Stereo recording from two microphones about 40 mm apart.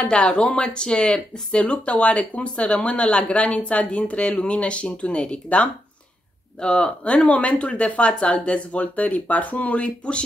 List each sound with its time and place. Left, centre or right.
0.0 s speech: left
7.2 s speech: left